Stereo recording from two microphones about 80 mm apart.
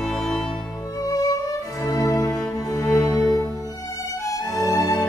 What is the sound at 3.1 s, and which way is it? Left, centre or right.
Music, left.